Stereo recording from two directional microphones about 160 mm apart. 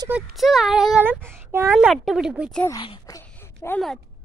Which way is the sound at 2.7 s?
25° left (ahead or behind).